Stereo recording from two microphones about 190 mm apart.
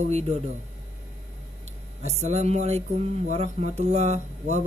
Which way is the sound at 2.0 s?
35° right (ahead or behind).